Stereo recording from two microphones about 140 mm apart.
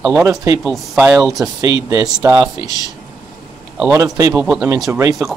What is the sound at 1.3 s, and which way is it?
Speech, 25° right (ahead or behind).